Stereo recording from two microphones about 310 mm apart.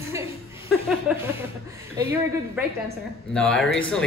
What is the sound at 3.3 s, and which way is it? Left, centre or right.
Speech, centre.